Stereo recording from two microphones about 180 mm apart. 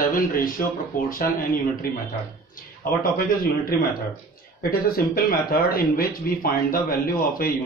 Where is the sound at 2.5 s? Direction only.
50° left (ahead or behind).